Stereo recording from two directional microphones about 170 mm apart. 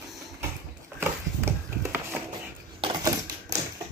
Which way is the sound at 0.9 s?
15° right (ahead or behind).